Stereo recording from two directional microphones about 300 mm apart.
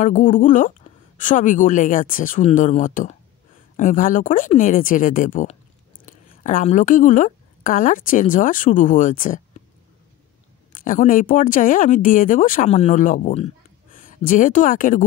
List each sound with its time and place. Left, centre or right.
0.0 s a woman's voice: left
10.7 s a woman's voice: left